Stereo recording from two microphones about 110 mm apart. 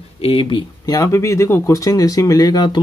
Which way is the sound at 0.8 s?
30° left (ahead or behind).